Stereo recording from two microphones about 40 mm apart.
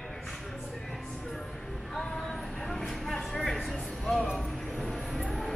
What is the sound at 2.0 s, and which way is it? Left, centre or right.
Vehicle, centre.